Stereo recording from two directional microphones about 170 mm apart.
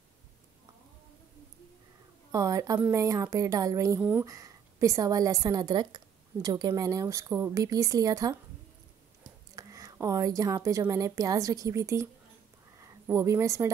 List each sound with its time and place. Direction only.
2.3 s a woman's voice: 20° right (ahead or behind)
9.6 s a woman's voice: 20° right (ahead or behind)
12.7 s a sound: 20° right (ahead or behind)